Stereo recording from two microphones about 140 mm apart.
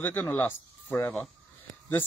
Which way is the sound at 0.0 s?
10° left (ahead or behind).